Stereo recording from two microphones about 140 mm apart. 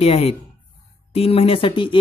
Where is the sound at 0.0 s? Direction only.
45° left (ahead or behind).